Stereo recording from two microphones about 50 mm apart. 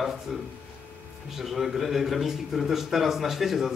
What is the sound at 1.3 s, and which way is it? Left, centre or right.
A man's voice, centre.